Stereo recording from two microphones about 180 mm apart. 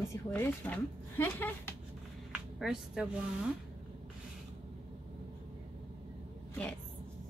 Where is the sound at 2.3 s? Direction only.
5° right (ahead or behind).